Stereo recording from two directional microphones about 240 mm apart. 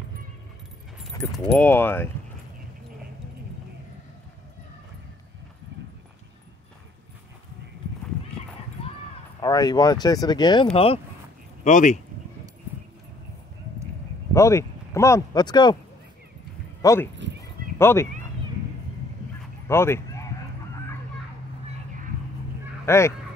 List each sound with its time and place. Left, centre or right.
1.5 s speech: centre
9.4 s speech: centre
14.3 s speech: centre
16.8 s speech: centre
19.7 s speech: centre
22.8 s speech: centre